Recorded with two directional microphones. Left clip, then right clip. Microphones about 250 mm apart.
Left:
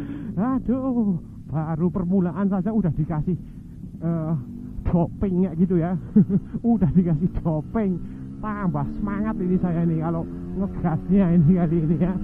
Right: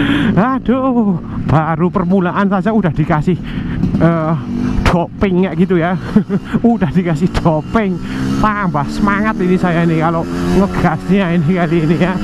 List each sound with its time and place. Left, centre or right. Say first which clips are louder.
0.0 s a sound: right 16 dB; centre
0.9 s speech: right 10 dB; right
1.6 s speech: right 10 dB; centre